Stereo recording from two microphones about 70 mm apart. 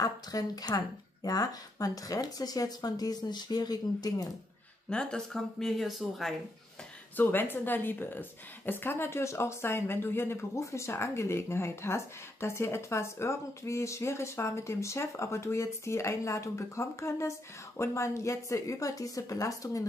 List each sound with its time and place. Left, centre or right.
0.0 s speech: left
4.8 s speech: centre
7.2 s a woman's voice: left